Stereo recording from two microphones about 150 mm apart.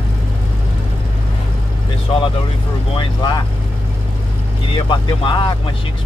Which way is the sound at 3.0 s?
30° left (ahead or behind).